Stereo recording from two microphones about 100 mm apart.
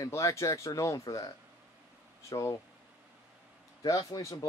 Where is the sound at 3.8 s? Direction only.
40° left (ahead or behind).